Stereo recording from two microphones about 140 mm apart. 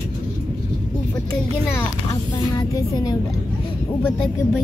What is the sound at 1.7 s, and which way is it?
Speech, 25° left (ahead or behind).